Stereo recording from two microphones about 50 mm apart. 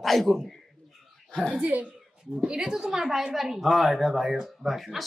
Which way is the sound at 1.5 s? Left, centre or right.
Right.